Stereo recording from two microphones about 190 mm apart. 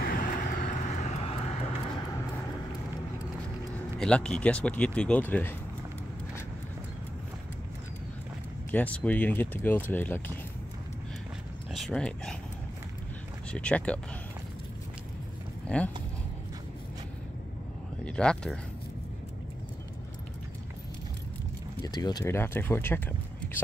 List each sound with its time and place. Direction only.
0.0 s vehicle: 50° left (ahead or behind); by 2.0 s 35° left (ahead or behind)
4.0 s speech: 5° left (ahead or behind)
8.7 s speech: 5° left (ahead or behind)
11.7 s speech: centre (ahead or behind)
13.5 s speech: 5° left (ahead or behind)
15.6 s a sound: 5° left (ahead or behind)
18.0 s speech: 5° left (ahead or behind)
21.8 s speech: 20° left (ahead or behind)